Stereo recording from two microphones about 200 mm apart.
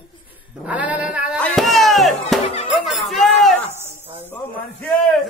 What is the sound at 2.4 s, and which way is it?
Speech, 30° left (ahead or behind).